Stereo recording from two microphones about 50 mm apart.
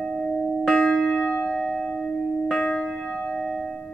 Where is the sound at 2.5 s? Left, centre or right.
Centre.